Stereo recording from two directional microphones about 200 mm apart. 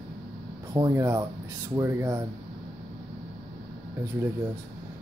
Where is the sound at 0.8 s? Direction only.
15° right (ahead or behind).